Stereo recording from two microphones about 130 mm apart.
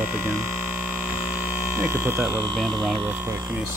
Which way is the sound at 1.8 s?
20° right (ahead or behind).